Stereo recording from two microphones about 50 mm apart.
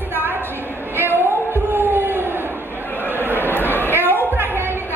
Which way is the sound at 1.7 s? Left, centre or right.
Right.